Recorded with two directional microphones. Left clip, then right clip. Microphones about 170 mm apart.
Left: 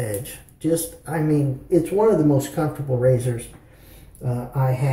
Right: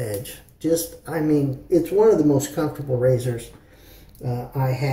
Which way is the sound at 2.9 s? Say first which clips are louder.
Even; 15° right (ahead or behind).